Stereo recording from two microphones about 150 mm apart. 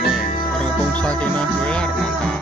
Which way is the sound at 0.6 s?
5° left (ahead or behind).